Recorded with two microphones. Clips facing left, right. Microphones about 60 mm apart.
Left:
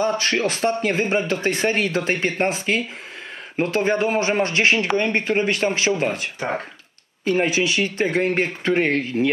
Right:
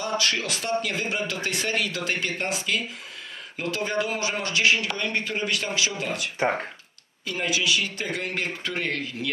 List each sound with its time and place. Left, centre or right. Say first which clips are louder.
0.0 s speech: left 6 dB; left